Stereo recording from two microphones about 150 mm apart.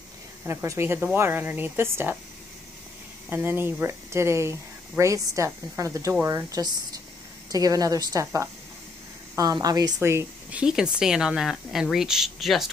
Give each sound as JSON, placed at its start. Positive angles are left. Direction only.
{"t": 0.5, "sound": "speech", "side_deg": -15}
{"t": 3.3, "sound": "a woman's voice", "side_deg": -15}
{"t": 9.9, "sound": "a woman's voice", "side_deg": -15}